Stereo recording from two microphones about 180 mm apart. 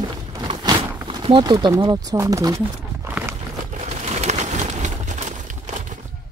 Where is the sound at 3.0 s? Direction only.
15° right (ahead or behind).